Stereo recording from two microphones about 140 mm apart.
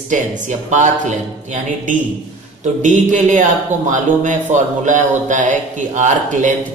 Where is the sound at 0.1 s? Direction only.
60° right (ahead or behind).